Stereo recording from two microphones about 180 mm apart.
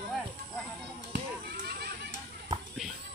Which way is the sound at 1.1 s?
60° right (ahead or behind).